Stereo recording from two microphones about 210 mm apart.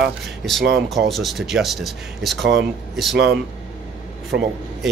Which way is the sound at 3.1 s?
50° right (ahead or behind).